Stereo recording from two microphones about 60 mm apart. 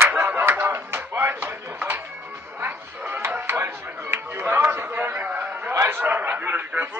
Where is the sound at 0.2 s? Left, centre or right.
Right.